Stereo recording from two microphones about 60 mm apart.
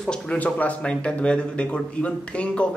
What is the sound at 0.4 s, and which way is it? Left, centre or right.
A man's voice, left.